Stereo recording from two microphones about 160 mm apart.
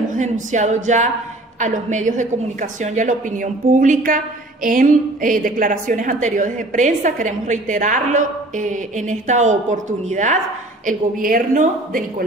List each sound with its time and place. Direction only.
0.1 s a woman's voice: 50° right (ahead or behind)
10.9 s a woman's voice: 60° right (ahead or behind)